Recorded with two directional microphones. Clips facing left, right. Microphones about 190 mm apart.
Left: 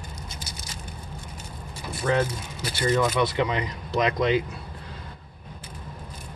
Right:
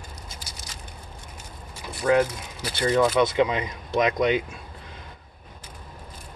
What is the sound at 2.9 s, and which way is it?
Speech, 20° right (ahead or behind).